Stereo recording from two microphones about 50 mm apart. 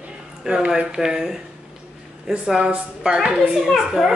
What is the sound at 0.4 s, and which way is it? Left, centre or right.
A woman's voice, centre.